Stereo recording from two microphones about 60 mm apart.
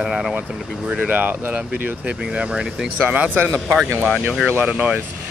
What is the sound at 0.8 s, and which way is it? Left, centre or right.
Speech, right.